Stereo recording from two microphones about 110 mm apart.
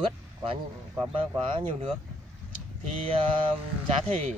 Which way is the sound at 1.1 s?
55° right (ahead or behind).